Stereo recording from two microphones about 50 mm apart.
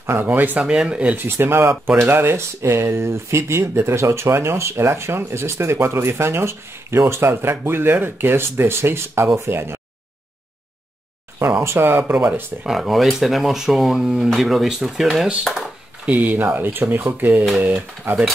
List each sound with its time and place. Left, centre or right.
0.2 s speech: right
0.6 s speech: right
1.1 s speech: right
2.6 s speech: right
11.3 s speech: right
12.6 s speech: centre
13.9 s speech: centre
14.3 s speech: centre
16.1 s speech: right
16.3 s speech: right